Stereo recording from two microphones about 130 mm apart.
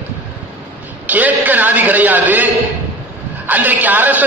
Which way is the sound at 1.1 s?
10° right (ahead or behind).